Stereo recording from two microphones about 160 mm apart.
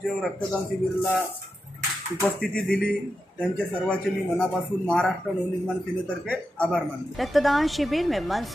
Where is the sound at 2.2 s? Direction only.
5° left (ahead or behind).